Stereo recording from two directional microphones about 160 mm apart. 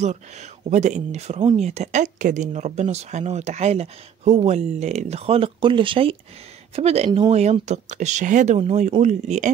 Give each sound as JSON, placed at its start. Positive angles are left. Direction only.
{"t": 0.7, "sound": "speech", "side_deg": -45}